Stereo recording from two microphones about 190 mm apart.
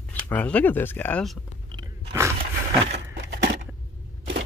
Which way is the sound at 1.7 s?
20° right (ahead or behind).